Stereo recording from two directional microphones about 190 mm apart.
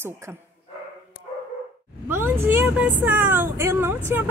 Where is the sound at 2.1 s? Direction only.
10° right (ahead or behind).